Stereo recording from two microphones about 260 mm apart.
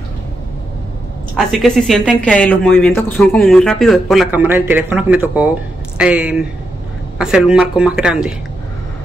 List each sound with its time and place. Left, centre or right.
1.3 s speech: centre